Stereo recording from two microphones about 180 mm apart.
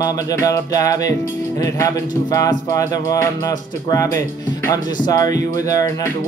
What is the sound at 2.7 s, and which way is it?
Speech, 20° left (ahead or behind).